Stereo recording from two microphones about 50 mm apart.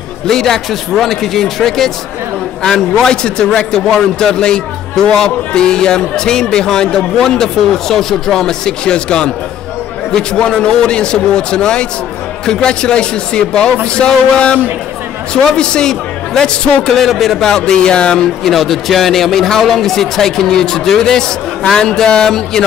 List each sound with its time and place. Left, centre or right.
0.3 s a man's voice: centre
10.4 s a man's voice: centre
13.9 s a sound: centre
15.4 s a man's voice: centre
18.4 s a man's voice: centre